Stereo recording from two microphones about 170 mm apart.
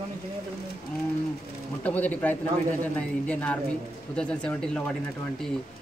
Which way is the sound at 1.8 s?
10° left (ahead or behind).